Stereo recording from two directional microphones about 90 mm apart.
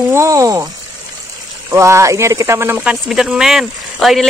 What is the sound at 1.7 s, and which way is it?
Speech, 35° right (ahead or behind).